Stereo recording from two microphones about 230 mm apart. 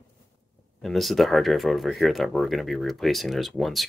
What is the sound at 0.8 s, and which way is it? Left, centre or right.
Speech, centre.